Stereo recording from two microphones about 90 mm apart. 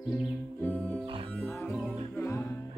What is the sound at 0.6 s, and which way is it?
Music, 20° left (ahead or behind).